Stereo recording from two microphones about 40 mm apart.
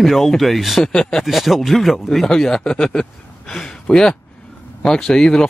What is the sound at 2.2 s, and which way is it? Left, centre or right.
Speech, centre.